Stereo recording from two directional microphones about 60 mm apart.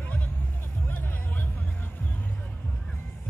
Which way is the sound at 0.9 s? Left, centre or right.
Left.